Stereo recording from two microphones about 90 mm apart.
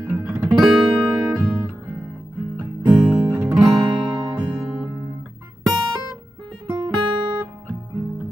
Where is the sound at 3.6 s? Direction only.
55° right (ahead or behind).